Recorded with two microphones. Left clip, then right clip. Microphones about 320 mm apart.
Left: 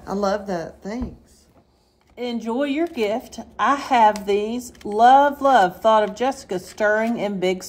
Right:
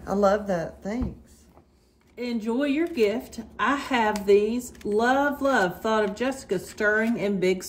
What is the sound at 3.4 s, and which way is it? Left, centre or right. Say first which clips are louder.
Speech: left 6 dB; centre.